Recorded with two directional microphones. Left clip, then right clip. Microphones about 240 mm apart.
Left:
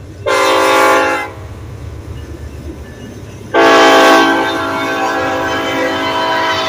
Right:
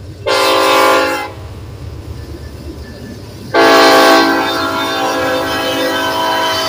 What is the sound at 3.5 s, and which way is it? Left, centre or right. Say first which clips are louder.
Train: even; centre.